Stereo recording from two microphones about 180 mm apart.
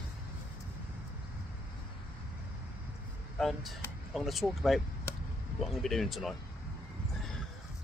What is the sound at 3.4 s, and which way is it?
Speech, centre (ahead or behind).